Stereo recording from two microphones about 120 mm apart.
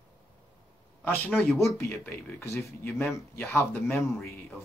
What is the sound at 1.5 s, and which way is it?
Speech, 25° left (ahead or behind).